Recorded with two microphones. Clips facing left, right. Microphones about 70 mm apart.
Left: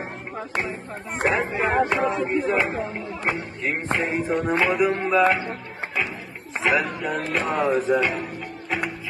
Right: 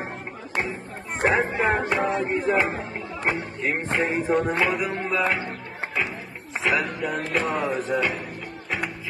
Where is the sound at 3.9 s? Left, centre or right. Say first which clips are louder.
Right 2 dB; centre.